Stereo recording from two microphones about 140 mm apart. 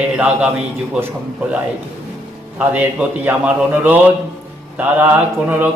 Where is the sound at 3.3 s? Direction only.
15° right (ahead or behind).